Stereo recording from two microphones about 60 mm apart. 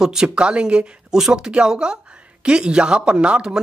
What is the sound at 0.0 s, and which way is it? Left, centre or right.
Speech, centre.